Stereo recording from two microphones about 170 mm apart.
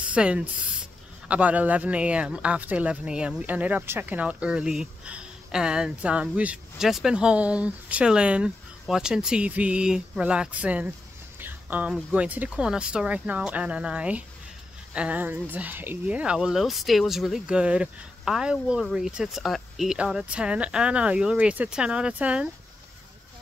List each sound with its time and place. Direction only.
0.0 s speech: 5° right (ahead or behind)